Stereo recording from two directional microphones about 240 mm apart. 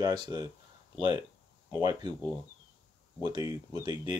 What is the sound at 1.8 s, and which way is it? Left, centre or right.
Speech, centre.